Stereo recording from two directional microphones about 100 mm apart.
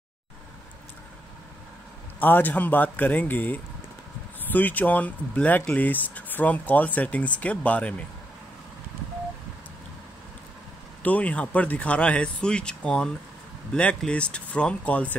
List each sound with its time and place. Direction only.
2.1 s speech: 20° left (ahead or behind)
11.0 s speech: 15° left (ahead or behind)